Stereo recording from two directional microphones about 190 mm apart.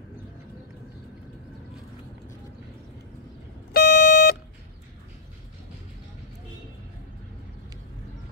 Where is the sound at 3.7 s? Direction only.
50° left (ahead or behind).